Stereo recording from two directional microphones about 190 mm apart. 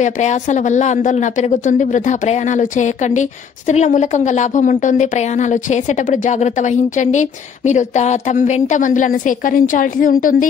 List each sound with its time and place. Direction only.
0.0 s speech: 40° left (ahead or behind)